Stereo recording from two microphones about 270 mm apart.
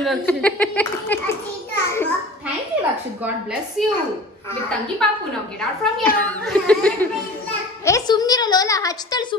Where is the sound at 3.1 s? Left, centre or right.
Centre.